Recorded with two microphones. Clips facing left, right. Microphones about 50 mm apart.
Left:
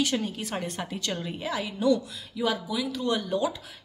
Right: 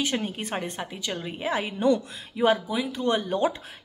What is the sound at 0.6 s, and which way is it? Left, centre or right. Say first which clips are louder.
Speech: even; centre.